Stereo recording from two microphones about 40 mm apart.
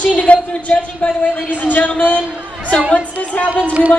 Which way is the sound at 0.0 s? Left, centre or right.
Left.